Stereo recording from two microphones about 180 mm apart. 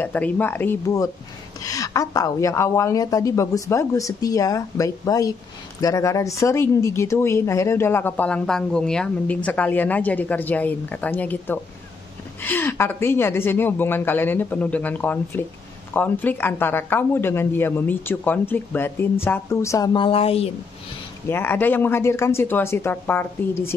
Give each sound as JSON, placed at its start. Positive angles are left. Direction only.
{"t": 0.0, "sound": "a woman's voice", "side_deg": 10}
{"t": 21.3, "sound": "speech", "side_deg": 10}